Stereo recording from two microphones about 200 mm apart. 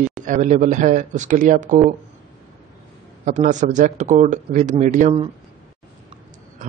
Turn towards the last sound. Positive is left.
turn(degrees=-40)  # may be behind; listen again after turning